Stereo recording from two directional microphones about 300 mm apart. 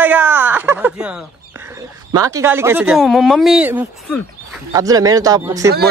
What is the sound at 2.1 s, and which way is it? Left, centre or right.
Speech, centre.